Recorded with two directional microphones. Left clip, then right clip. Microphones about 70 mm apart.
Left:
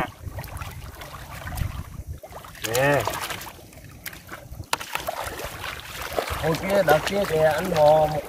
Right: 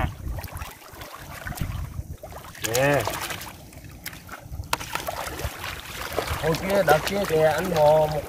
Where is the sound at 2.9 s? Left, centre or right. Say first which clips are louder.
Left 1 dB; centre.